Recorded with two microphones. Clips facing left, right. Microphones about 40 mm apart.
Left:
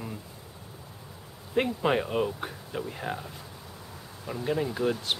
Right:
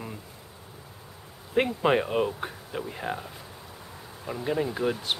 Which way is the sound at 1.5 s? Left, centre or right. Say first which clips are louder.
Right 2 dB; centre.